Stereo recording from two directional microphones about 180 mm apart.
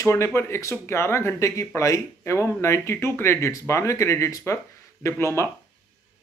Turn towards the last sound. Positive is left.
turn(degrees=15)  # may be behind; listen again after turning